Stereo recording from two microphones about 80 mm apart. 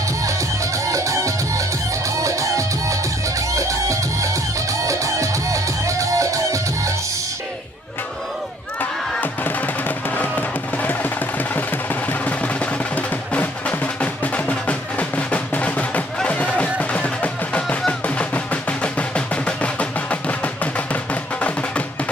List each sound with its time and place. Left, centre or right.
0.2 s music: right
9.2 s music: left